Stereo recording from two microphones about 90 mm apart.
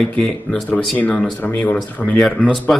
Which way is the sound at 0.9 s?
15° left (ahead or behind).